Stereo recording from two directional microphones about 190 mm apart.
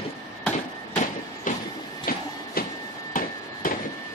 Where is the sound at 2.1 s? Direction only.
50° left (ahead or behind).